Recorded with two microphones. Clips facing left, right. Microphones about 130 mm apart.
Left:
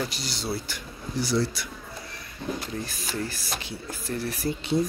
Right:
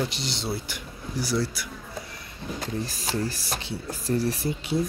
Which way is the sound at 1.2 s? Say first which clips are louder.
Left 1 dB; 5° right (ahead or behind).